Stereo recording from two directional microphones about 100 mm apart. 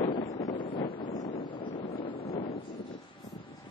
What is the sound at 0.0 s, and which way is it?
Wind noise, 65° left (ahead or behind).